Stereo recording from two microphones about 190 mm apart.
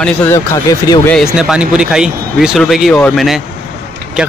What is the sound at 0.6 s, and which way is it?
Speech, 20° left (ahead or behind).